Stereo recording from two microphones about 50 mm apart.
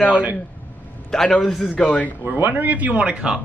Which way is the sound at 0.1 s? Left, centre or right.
Right.